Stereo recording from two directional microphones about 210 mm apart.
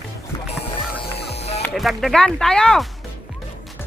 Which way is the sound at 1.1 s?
30° left (ahead or behind).